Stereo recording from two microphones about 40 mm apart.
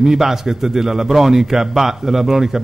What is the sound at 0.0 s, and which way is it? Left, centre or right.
Speech, centre.